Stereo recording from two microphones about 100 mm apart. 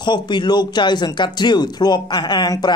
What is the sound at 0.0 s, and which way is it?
Speech, 50° left (ahead or behind).